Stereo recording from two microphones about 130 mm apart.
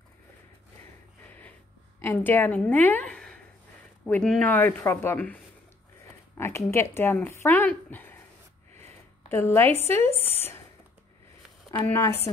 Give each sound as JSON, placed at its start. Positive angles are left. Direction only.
{"t": 2.0, "sound": "a woman's voice", "side_deg": 15}
{"t": 9.3, "sound": "speech", "side_deg": 20}
{"t": 10.1, "sound": "speech", "side_deg": 50}
{"t": 11.8, "sound": "speech", "side_deg": 20}